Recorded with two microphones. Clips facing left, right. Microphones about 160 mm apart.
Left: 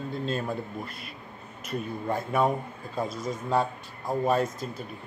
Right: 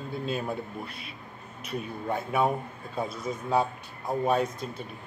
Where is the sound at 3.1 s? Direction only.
60° right (ahead or behind).